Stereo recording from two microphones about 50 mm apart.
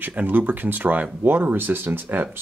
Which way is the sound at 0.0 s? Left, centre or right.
Right.